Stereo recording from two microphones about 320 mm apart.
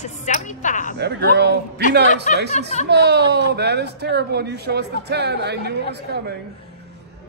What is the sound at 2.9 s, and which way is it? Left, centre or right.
Speech, right.